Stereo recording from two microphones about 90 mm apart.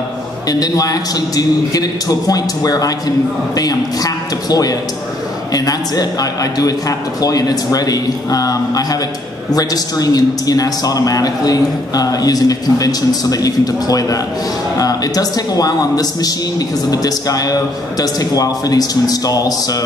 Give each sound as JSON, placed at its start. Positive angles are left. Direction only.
{"t": 0.5, "sound": "a man's voice", "side_deg": 45}